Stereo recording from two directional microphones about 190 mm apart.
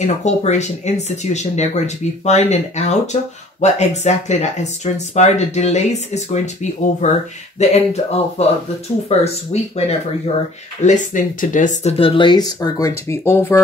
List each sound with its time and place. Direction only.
0.0 s speech: 35° left (ahead or behind); by 13.6 s 10° left (ahead or behind)